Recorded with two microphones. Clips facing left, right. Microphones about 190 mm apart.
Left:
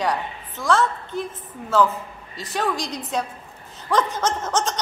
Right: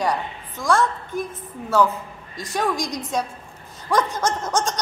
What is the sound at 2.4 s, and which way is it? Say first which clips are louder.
A woman's voice: right 1 dB; 15° right (ahead or behind).